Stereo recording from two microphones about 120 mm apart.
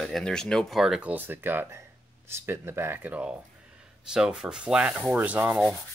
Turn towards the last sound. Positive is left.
turn(degrees=-15)  # may be behind; listen again after turning